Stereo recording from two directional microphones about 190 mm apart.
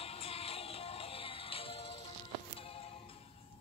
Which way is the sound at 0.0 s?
30° left (ahead or behind).